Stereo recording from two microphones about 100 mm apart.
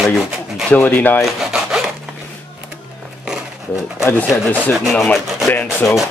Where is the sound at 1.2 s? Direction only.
5° right (ahead or behind).